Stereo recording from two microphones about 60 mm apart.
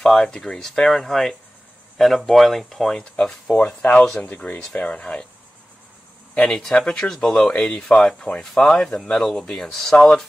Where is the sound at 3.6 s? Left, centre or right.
Left.